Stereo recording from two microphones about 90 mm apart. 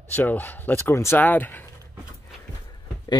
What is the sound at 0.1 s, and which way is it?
Speech, 20° left (ahead or behind).